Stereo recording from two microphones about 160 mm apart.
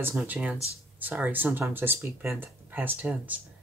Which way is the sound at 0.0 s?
5° right (ahead or behind).